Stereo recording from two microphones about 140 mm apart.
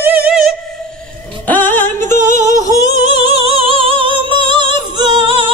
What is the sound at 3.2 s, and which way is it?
Music, 45° right (ahead or behind).